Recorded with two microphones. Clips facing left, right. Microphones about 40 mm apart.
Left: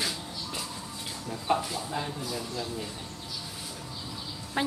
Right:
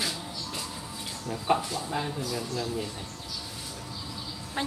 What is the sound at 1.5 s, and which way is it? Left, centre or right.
Speech, centre.